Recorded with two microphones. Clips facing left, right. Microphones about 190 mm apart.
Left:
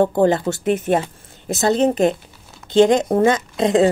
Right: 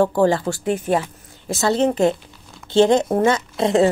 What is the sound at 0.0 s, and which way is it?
A woman's voice, 20° left (ahead or behind).